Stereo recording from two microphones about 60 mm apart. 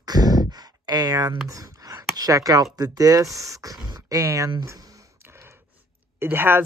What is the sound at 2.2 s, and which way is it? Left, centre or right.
Speech, right.